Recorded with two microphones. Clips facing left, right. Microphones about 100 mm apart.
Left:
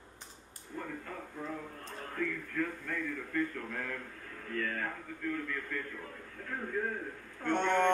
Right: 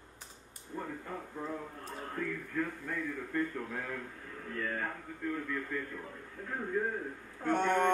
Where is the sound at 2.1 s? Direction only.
15° right (ahead or behind).